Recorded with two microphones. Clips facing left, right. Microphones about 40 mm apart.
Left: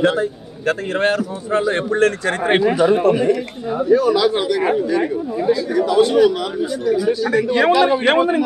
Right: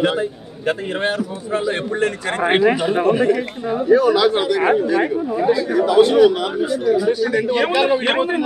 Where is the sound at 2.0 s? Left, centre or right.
Centre.